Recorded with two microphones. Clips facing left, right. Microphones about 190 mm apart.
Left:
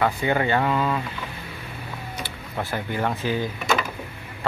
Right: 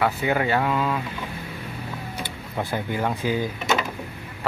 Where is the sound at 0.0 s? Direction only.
5° right (ahead or behind).